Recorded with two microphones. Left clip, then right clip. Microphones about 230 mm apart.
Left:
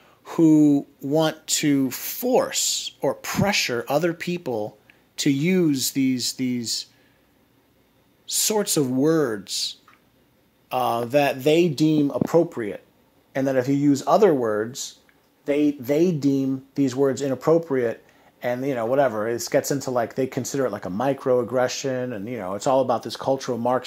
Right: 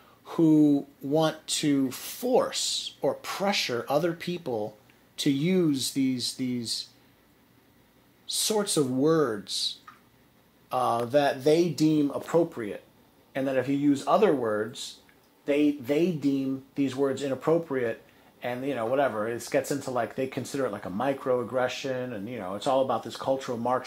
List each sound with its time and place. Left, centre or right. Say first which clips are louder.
0.2 s speech: left 5 dB; left
8.3 s speech: left 4 dB; left
11.4 s speech: left 4 dB; left
11.7 s speech: left 4 dB; left